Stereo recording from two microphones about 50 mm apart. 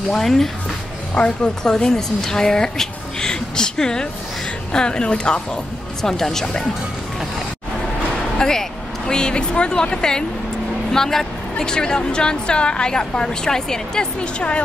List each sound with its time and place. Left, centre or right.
0.1 s a woman's voice: centre
1.1 s a woman's voice: left
8.4 s a woman's voice: centre